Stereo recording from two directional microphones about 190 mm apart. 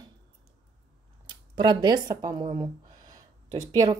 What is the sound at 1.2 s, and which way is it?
Speech, 25° right (ahead or behind).